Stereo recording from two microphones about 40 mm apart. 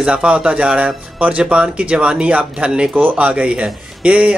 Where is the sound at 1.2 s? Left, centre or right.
Right.